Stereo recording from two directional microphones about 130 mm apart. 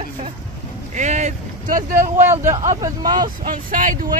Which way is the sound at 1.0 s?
60° right (ahead or behind).